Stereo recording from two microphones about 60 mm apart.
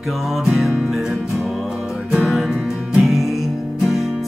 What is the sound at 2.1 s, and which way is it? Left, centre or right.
Music, centre.